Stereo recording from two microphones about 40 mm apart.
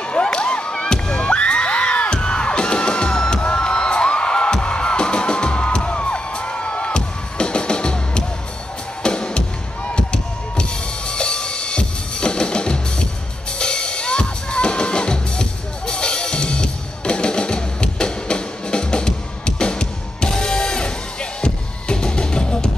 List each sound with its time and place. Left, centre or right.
0.0 s crowd: left
9.0 s music: left